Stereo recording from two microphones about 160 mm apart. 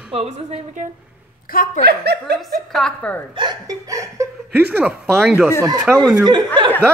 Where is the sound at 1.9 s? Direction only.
90° right.